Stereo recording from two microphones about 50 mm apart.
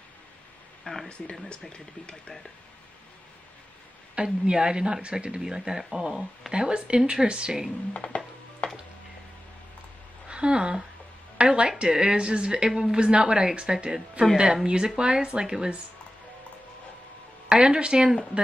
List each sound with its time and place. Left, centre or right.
1.0 s music: left
1.5 s speech: centre
4.1 s a woman's voice: centre
7.9 s music: left
10.2 s a woman's voice: centre
17.5 s a woman's voice: centre